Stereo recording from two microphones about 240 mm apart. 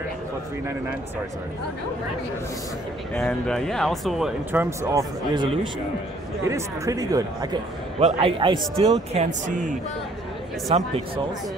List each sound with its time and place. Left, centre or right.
3.2 s a man's voice: centre
9.1 s a man's voice: right
10.7 s a man's voice: right